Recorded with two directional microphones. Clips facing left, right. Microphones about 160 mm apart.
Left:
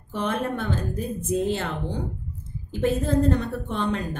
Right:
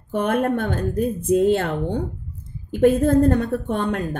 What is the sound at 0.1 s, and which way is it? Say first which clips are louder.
A woman's voice: right 6 dB; 55° right (ahead or behind).